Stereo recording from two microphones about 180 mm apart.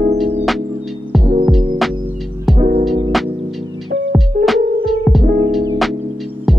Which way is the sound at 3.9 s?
75° right (ahead or behind).